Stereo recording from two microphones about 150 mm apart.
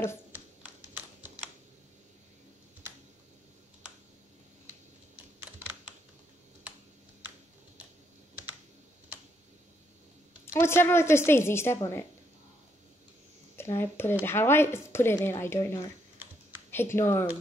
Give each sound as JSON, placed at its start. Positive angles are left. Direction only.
{"t": 0.9, "sound": "typing", "side_deg": -10}
{"t": 10.4, "sound": "a woman's voice", "side_deg": 15}
{"t": 13.6, "sound": "a woman's voice", "side_deg": 15}